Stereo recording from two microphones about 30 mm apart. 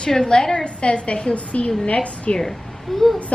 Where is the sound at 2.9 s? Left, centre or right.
Centre.